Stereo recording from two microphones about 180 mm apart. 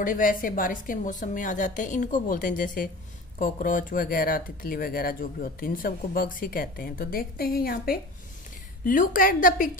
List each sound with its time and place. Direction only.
0.0 s speech: 50° left (ahead or behind)